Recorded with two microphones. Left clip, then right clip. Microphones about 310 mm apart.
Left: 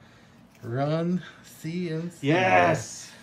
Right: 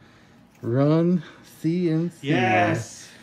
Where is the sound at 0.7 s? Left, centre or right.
Centre.